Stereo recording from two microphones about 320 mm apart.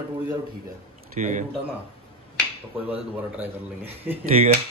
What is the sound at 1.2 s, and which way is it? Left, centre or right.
Dishes, right.